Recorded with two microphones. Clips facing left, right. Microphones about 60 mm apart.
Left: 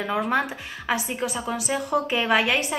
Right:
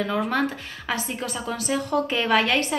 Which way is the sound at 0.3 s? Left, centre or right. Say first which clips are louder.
Even; centre.